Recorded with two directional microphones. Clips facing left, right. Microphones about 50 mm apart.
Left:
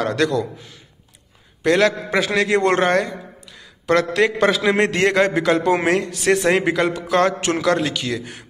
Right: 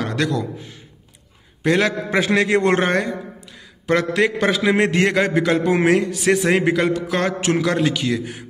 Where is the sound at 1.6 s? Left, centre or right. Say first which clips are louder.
Left 2 dB; centre.